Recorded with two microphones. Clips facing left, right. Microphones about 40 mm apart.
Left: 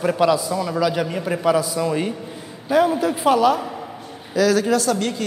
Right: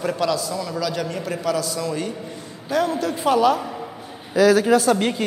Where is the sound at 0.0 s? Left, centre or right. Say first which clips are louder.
Left 4 dB; centre.